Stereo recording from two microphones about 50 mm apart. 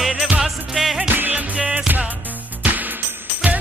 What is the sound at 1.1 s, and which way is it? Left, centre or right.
Music, right.